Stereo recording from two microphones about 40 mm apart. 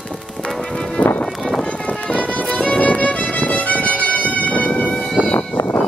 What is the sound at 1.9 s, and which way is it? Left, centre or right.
Run, left.